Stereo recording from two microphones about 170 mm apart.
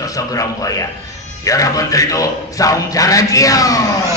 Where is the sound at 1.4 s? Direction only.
20° left (ahead or behind).